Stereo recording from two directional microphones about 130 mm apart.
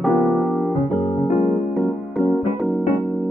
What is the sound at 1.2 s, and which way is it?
Music, 60° left (ahead or behind).